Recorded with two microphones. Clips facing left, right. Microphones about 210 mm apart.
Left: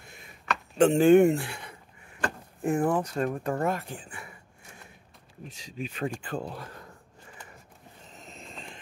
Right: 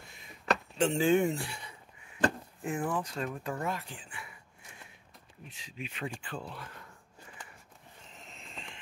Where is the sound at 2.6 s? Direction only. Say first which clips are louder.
Left 8 dB; 45° left (ahead or behind).